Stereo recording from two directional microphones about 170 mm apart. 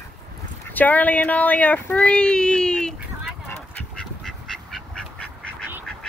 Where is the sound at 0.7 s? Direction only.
10° left (ahead or behind).